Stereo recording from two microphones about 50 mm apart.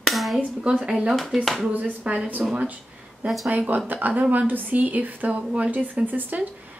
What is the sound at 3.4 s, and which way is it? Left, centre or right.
A woman's voice, right.